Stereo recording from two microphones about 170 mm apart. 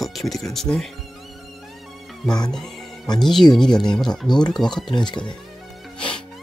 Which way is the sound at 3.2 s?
Centre (ahead or behind).